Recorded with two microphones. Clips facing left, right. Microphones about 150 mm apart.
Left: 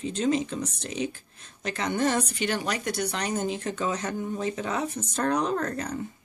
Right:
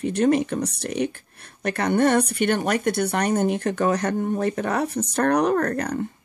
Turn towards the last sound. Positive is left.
turn(degrees=-65)  # may be behind; listen again after turning